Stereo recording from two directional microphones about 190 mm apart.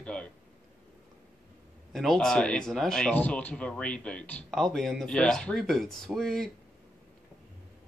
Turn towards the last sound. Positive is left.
turn(degrees=0)  # may be behind; listen again after turning